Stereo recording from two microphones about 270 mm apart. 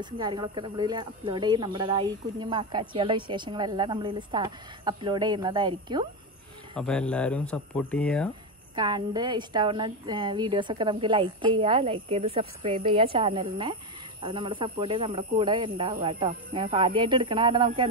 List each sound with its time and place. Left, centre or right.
0.0 s speech: centre
6.8 s speech: centre
8.7 s speech: centre